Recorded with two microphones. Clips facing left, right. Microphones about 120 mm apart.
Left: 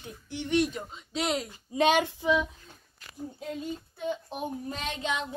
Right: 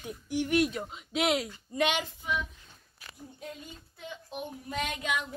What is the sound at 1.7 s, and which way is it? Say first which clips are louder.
Speech: left 3 dB; 10° left (ahead or behind).